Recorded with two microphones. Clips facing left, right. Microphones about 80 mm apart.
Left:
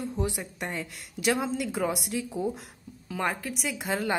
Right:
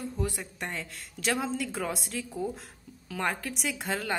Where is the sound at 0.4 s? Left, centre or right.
Centre.